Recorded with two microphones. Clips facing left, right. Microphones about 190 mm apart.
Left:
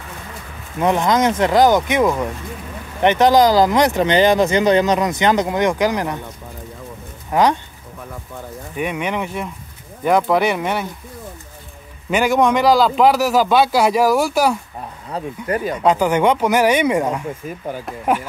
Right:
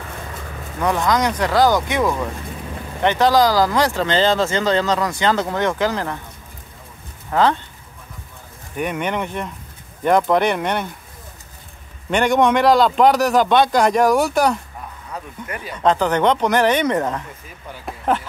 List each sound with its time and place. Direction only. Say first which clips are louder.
0.7 s speech: left 3 dB; 20° left (ahead or behind)
7.2 s speech: left 1 dB; 15° left (ahead or behind)
8.7 s a man's voice: even; centre (ahead or behind)
12.1 s a man's voice: even; 5° left (ahead or behind)
15.0 s speech: left 9 dB; 35° left (ahead or behind)
15.8 s speech: even; 10° left (ahead or behind)